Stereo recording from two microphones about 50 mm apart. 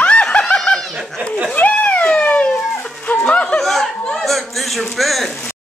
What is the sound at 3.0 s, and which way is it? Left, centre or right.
Snicker, left.